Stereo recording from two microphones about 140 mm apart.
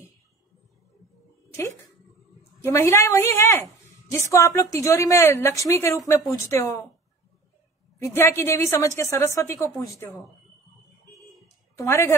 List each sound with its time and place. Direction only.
2.6 s a woman's voice: 20° left (ahead or behind)
8.0 s a woman's voice: 20° left (ahead or behind)
11.7 s a woman's voice: 20° left (ahead or behind)